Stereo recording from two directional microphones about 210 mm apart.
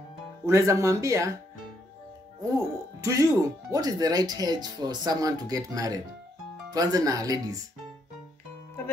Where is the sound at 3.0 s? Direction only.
15° right (ahead or behind).